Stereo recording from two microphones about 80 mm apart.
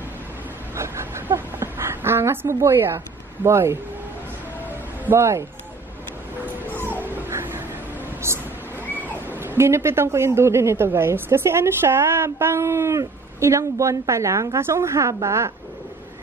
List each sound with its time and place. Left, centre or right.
0.7 s a sound: right
3.4 s a man's voice: right
5.1 s a man's voice: right
6.7 s dog: right
8.3 s a man's voice: right
8.9 s a man's voice: right